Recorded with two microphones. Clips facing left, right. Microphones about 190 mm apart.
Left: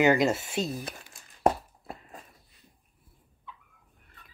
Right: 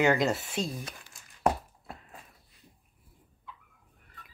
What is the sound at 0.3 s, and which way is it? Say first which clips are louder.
Speech: left 2 dB; 25° left (ahead or behind).